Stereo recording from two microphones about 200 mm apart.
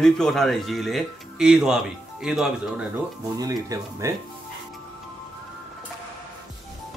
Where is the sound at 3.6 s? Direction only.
15° right (ahead or behind).